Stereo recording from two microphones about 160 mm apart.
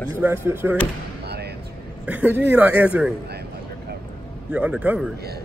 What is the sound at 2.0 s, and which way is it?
Speech, 10° right (ahead or behind).